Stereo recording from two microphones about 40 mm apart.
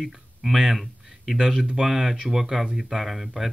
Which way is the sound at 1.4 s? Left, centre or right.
Centre.